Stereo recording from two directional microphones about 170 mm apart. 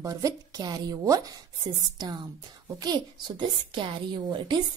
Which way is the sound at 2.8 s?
25° right (ahead or behind).